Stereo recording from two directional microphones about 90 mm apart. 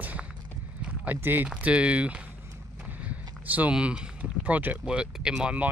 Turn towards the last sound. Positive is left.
turn(degrees=-15)  # may be behind; listen again after turning